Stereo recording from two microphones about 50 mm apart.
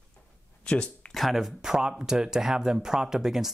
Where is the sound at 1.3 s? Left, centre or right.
Centre.